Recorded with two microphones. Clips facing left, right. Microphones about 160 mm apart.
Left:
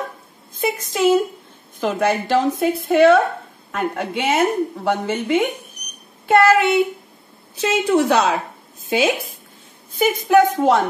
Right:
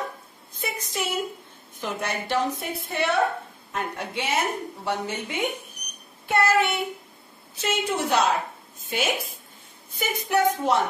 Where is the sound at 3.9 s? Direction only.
55° left (ahead or behind).